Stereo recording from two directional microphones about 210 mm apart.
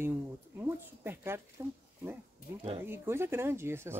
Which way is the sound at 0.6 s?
10° right (ahead or behind).